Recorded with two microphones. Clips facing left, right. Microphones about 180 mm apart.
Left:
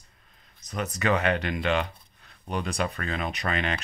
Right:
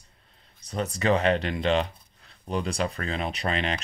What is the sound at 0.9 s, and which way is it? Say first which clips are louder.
Speech: right 2 dB; 30° right (ahead or behind).